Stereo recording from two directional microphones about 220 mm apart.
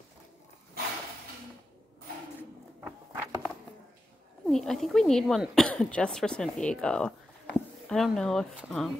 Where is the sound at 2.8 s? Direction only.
15° right (ahead or behind).